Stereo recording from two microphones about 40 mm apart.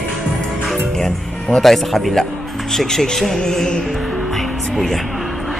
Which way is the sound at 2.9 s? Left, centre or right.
Centre.